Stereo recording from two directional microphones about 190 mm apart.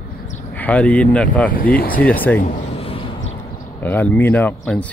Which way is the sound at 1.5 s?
50° left (ahead or behind).